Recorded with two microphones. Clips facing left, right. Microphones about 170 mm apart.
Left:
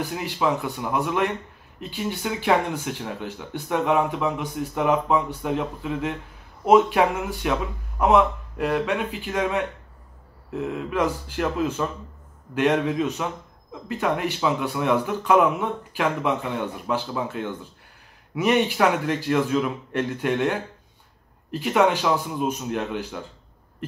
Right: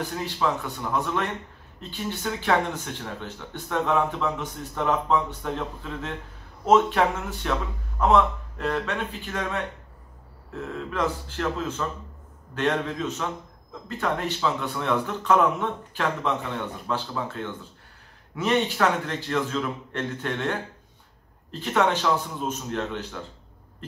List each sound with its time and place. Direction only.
0.1 s speech: 15° left (ahead or behind)